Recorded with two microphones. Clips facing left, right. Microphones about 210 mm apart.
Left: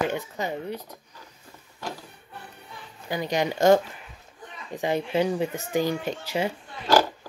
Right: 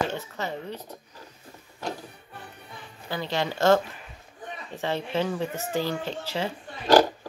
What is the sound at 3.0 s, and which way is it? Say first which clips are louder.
Speech: left 3 dB; 15° left (ahead or behind).